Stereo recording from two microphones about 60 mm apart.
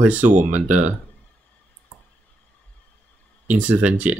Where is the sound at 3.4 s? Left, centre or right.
Right.